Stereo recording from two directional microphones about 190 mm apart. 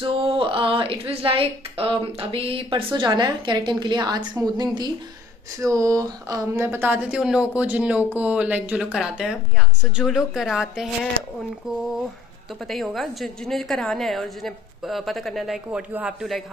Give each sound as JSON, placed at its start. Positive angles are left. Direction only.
{"t": 0.0, "sound": "a woman's voice", "side_deg": -30}
{"t": 12.6, "sound": "a woman's voice", "side_deg": 0}